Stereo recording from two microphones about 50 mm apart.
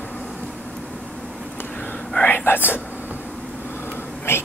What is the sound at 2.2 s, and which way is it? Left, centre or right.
Whispering, left.